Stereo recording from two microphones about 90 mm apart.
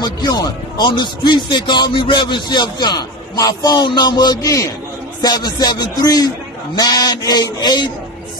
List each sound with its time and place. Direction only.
0.0 s speech: 50° left (ahead or behind)